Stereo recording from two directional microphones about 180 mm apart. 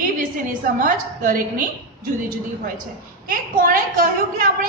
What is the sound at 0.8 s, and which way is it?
Speech, 45° right (ahead or behind).